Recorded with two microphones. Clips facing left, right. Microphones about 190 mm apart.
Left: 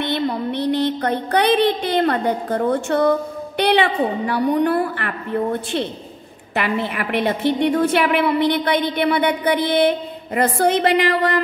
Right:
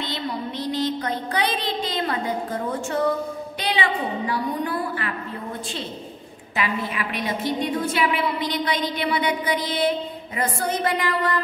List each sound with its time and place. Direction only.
0.0 s music: 60° left (ahead or behind)
3.5 s a woman's voice: 65° left (ahead or behind)